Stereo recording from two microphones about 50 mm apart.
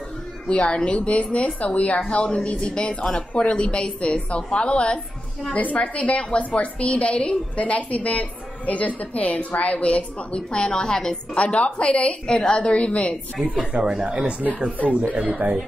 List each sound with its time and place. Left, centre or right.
0.5 s a woman's voice: left
2.0 s a woman's voice: centre
11.3 s a woman's voice: left
13.7 s speech: right